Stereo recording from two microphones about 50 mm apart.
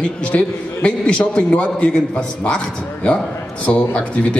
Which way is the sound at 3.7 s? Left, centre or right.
Left.